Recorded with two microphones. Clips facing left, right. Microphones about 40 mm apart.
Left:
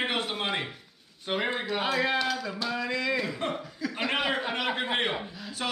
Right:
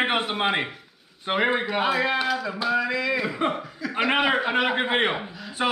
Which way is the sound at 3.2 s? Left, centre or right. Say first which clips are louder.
Right 6 dB; right.